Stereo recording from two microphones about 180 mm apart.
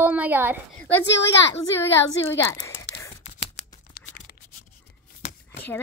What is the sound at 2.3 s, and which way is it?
Speech, 15° left (ahead or behind).